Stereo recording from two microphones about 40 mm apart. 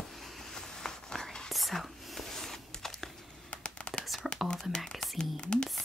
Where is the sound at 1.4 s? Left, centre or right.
Centre.